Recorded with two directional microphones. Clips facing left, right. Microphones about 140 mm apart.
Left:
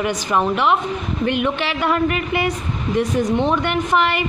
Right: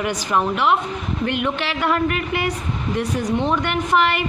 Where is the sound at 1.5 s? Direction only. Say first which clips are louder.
Left 1 dB; 15° left (ahead or behind).